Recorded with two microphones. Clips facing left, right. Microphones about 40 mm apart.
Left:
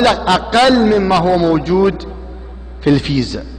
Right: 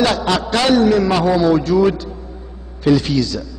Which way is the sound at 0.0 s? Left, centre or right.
Left.